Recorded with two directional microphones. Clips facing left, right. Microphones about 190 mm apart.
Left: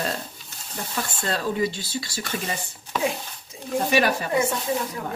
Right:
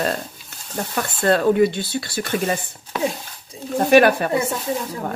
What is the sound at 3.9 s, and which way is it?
Speech, 55° right (ahead or behind).